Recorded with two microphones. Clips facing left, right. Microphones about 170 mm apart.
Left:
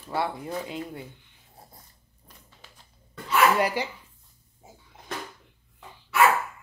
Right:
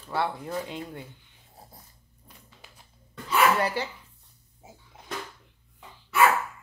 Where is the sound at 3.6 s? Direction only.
15° left (ahead or behind).